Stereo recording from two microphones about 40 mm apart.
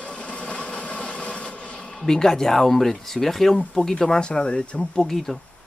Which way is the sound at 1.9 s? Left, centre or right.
Centre.